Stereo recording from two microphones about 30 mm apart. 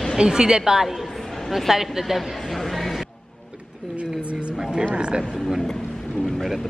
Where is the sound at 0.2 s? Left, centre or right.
Right.